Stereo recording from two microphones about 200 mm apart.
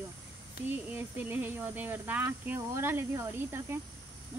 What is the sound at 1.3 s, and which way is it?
Speech, 10° right (ahead or behind).